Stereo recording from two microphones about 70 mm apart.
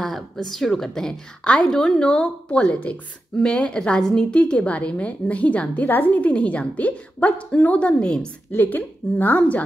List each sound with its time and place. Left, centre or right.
0.0 s a woman's voice: centre
8.5 s a woman's voice: left